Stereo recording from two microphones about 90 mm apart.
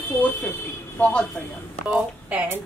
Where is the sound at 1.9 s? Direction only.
15° right (ahead or behind).